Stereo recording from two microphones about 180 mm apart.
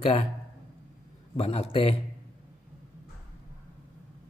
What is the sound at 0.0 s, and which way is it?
Speech, 35° left (ahead or behind).